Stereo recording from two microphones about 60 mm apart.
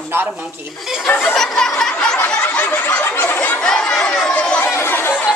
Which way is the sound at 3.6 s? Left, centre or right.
Centre.